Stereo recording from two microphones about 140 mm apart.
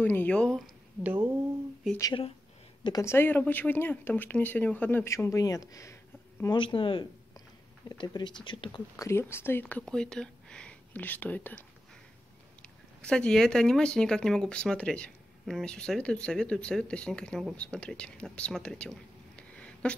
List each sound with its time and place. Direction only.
0.0 s speech: 15° left (ahead or behind)
1.0 s speech: 15° right (ahead or behind)
2.8 s speech: 25° left (ahead or behind)
6.5 s speech: 35° left (ahead or behind)
8.9 s speech: 20° left (ahead or behind)
12.6 s speech: 5° left (ahead or behind)